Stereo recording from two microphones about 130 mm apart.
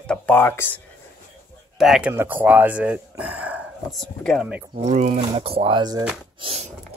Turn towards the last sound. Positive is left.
turn(degrees=-50)  # may be behind; listen again after turning